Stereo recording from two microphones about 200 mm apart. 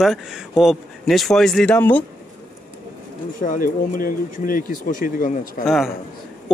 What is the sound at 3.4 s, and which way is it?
Speech, 45° left (ahead or behind).